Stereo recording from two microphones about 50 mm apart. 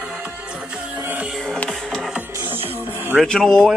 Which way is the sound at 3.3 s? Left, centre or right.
Centre.